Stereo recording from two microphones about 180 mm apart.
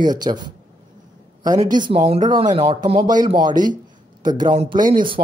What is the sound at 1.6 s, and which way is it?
Speech, 25° right (ahead or behind).